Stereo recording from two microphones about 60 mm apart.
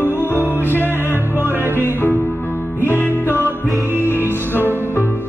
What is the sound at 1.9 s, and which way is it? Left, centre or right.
Music, left.